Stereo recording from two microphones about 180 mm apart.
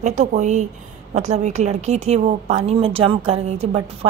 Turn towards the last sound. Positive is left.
turn(degrees=-35)  # may be behind; listen again after turning